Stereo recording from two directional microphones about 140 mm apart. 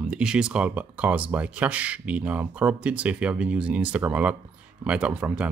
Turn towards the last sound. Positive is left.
turn(degrees=-10)  # may be behind; listen again after turning